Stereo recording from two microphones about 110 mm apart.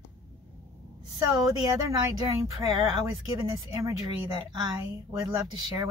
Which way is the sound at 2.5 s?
35° right (ahead or behind).